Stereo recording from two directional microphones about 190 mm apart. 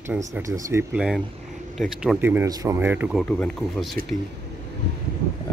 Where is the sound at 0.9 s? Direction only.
5° right (ahead or behind).